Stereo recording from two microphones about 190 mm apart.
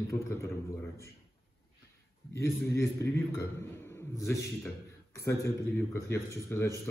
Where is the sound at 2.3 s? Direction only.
15° left (ahead or behind).